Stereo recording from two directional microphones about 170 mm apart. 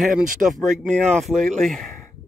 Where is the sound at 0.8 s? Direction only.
Centre (ahead or behind).